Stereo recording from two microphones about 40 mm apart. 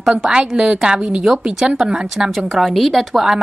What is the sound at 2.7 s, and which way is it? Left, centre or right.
Speech, centre.